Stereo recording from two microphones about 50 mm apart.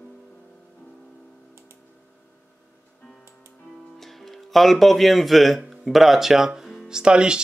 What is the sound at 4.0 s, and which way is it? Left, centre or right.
Speech, centre.